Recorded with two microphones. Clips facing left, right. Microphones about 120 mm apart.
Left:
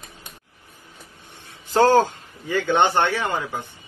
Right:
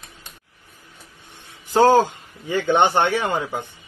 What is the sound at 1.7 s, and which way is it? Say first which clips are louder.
A man's voice: right 1 dB; 15° right (ahead or behind).